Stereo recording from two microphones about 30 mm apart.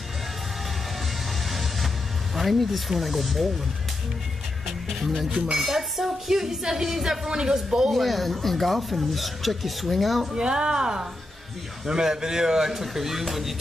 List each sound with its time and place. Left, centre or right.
1.5 s music: centre
2.3 s speech: centre
4.9 s speech: centre
7.9 s speech: centre
10.3 s speech: right; by 13.6 s centre